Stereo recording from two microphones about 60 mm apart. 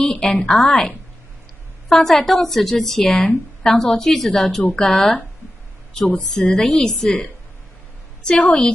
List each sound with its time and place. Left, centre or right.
0.0 s a woman's voice: centre
7.1 s a woman's voice: left